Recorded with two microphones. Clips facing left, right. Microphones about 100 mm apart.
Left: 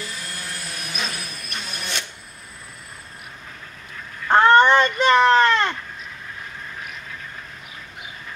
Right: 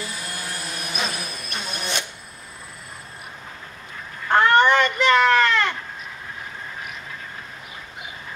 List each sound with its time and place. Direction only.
0.0 s vehicle: 10° right (ahead or behind)
1.5 s printer: 25° right (ahead or behind)
4.3 s a sound: 25° left (ahead or behind)